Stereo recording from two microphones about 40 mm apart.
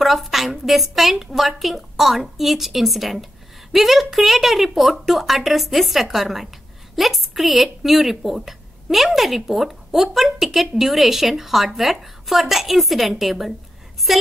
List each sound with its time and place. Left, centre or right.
0.0 s a woman's voice: centre